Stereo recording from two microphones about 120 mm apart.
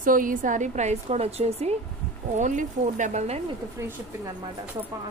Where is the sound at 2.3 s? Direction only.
90° right.